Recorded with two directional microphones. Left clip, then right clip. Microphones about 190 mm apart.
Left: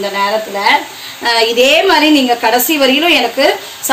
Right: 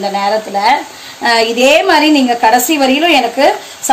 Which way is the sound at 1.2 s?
50° right (ahead or behind).